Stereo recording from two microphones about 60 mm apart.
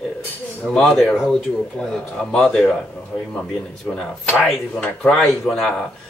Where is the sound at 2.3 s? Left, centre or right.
Centre.